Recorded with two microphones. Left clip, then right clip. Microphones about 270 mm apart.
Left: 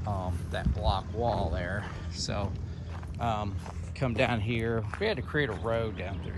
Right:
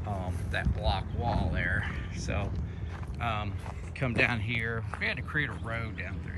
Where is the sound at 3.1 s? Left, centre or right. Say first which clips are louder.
Left 2 dB; centre.